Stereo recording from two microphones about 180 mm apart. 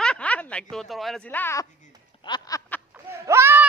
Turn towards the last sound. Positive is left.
turn(degrees=-10)  # may be behind; listen again after turning